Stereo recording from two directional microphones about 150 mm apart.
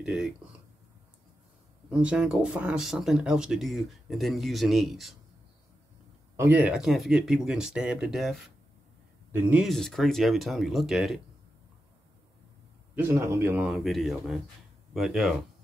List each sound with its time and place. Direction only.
0.0 s speech: 5° right (ahead or behind)
1.9 s speech: 5° right (ahead or behind)
6.3 s a man's voice: 15° right (ahead or behind)
9.7 s speech: centre (ahead or behind)
12.9 s a man's voice: 15° right (ahead or behind)
13.7 s speech: centre (ahead or behind)